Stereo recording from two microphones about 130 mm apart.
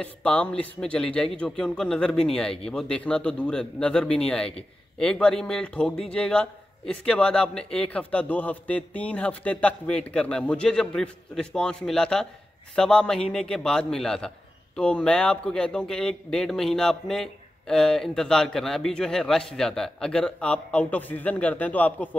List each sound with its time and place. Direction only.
0.0 s a man's voice: 10° left (ahead or behind)